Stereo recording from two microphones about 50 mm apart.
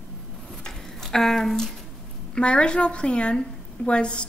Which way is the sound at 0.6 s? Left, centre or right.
Centre.